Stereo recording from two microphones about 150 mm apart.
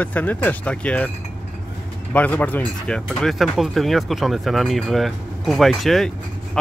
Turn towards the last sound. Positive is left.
turn(degrees=0)  # may be behind; listen again after turning